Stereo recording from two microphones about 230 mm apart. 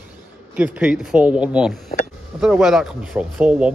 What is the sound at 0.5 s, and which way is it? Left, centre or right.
Speech, centre.